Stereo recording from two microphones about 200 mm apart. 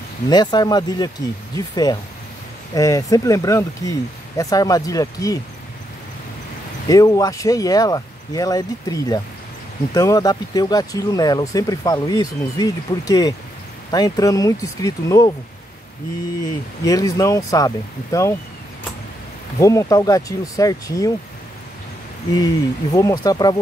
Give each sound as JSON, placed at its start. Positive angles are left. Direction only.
{"t": 0.3, "sound": "speech", "side_deg": 20}
{"t": 2.7, "sound": "speech", "side_deg": 15}
{"t": 6.9, "sound": "speech", "side_deg": 15}
{"t": 16.4, "sound": "speech", "side_deg": 15}
{"t": 19.6, "sound": "speech", "side_deg": 15}
{"t": 22.3, "sound": "speech", "side_deg": 20}